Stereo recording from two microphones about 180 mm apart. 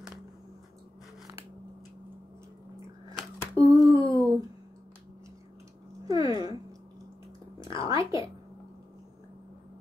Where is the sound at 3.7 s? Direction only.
20° right (ahead or behind).